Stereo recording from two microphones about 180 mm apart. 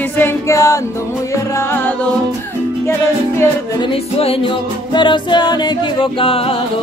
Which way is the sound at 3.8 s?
30° left (ahead or behind).